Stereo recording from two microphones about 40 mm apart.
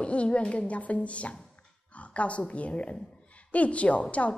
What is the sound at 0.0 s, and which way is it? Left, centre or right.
A woman's voice, left.